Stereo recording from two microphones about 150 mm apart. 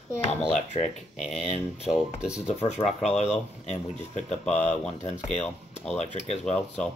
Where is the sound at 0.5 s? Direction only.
45° left (ahead or behind).